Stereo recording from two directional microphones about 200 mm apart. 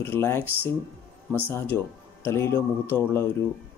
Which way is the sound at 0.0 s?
10° left (ahead or behind).